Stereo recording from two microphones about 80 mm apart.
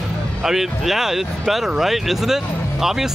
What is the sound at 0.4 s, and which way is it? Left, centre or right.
Speech, centre.